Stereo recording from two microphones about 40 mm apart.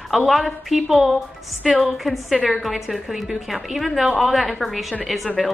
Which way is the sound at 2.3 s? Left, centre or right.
Left.